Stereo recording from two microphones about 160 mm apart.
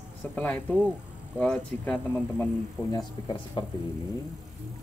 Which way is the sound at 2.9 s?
30° left (ahead or behind).